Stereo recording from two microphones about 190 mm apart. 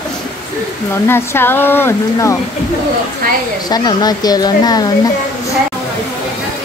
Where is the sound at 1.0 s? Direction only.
10° left (ahead or behind).